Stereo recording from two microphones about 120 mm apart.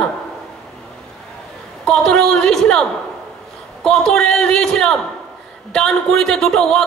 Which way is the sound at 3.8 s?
5° left (ahead or behind).